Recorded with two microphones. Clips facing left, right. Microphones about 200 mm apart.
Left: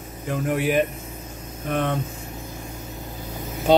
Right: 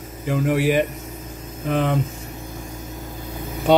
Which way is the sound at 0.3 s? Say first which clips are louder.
Right 3 dB; centre (ahead or behind).